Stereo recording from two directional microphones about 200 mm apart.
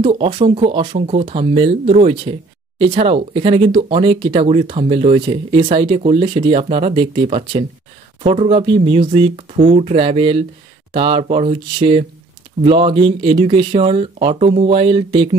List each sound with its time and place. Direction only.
0.0 s speech: 25° right (ahead or behind)